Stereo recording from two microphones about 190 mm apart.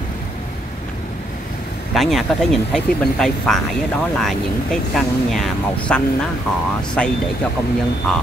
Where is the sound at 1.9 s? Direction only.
Centre (ahead or behind).